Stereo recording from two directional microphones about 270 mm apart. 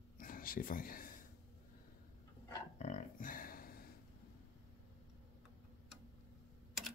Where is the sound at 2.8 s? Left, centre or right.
Left.